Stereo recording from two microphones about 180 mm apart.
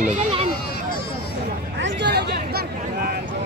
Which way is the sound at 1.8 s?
80° right.